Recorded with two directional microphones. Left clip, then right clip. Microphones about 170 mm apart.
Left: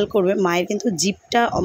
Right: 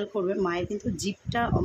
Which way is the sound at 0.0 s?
40° left (ahead or behind).